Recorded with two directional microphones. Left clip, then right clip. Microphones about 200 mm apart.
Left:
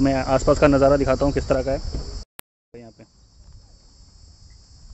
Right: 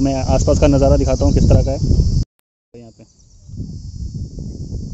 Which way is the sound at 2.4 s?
Centre (ahead or behind).